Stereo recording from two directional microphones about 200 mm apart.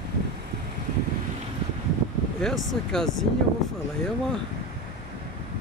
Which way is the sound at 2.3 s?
5° left (ahead or behind).